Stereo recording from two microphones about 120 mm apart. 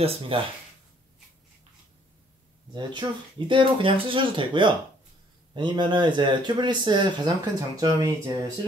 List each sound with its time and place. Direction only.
0.3 s speech: 50° right (ahead or behind)
2.7 s speech: 40° right (ahead or behind)